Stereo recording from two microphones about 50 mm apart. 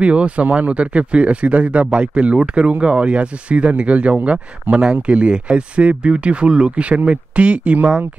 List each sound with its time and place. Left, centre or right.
0.0 s speech: right
4.7 s speech: right
5.0 s speech: right